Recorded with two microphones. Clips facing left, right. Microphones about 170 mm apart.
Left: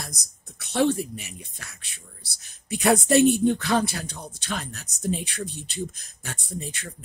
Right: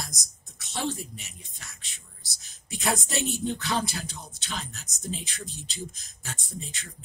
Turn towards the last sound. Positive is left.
turn(degrees=60)  # may be behind; listen again after turning